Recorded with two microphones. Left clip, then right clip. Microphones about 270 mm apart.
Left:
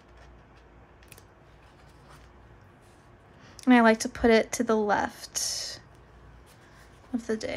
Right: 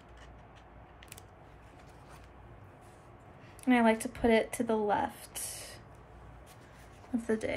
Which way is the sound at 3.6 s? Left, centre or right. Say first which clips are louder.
Left 7 dB; centre.